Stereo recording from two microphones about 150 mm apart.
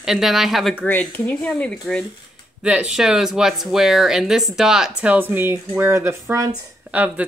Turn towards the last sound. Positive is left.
turn(degrees=-10)  # may be behind; listen again after turning